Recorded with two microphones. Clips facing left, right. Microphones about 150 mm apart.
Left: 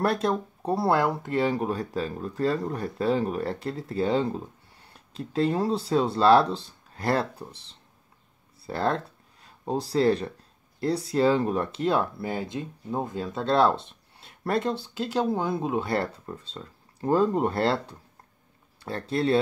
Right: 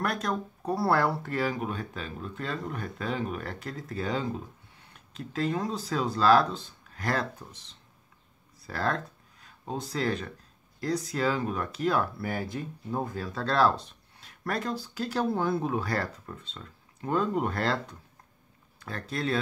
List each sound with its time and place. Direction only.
0.0 s speech: 30° left (ahead or behind)